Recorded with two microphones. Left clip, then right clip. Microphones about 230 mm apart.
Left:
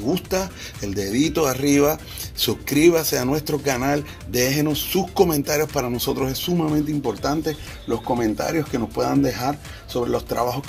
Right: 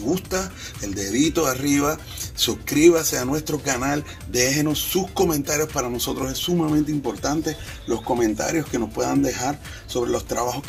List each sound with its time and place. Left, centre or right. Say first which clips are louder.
0.0 s speech: left 2 dB; left